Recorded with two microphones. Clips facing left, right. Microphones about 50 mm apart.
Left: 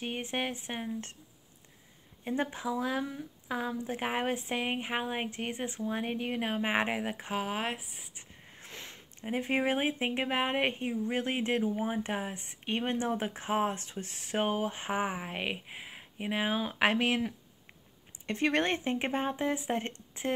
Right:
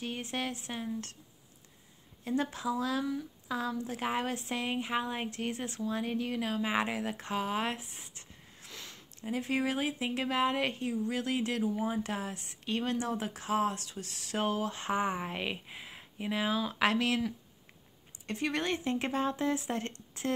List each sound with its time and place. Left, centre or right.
0.0 s speech: left
2.2 s speech: left
7.0 s speech: centre
8.5 s speech: left
18.2 s speech: left
18.9 s speech: left